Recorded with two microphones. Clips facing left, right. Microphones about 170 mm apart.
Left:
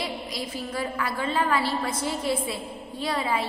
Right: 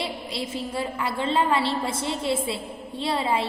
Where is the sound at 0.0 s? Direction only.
30° right (ahead or behind).